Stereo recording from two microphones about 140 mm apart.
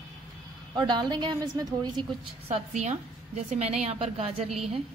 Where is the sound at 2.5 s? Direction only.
55° right (ahead or behind).